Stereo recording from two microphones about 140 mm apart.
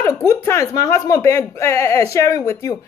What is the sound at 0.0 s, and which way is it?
Speech, 20° left (ahead or behind).